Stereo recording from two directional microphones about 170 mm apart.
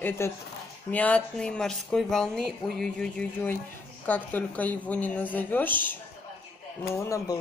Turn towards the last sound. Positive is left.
turn(degrees=15)  # may be behind; listen again after turning